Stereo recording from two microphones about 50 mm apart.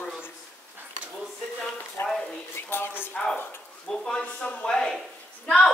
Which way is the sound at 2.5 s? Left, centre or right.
Left.